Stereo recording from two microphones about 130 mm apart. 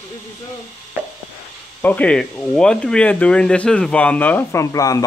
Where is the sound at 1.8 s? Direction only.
10° left (ahead or behind).